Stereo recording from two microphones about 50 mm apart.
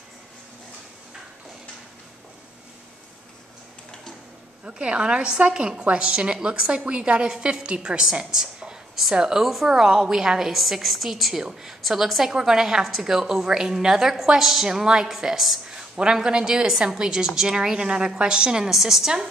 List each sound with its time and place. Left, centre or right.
4.6 s a woman's voice: right; by 15.8 s centre
16.0 s a woman's voice: centre